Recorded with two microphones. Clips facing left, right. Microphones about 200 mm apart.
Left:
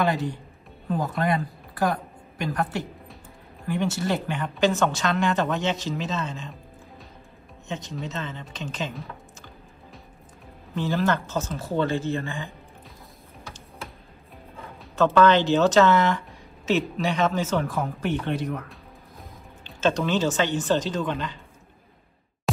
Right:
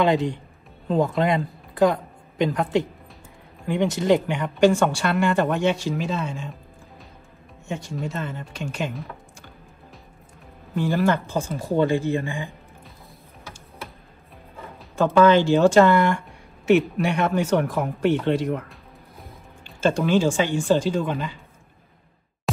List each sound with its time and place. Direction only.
0.0 s a man's voice: 20° right (ahead or behind)
7.6 s speech: 10° right (ahead or behind)
10.7 s speech: 10° right (ahead or behind)
15.0 s speech: 10° right (ahead or behind)
19.8 s speech: 10° right (ahead or behind)